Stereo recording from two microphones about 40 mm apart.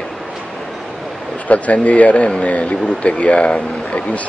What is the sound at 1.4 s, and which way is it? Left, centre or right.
Speech, left.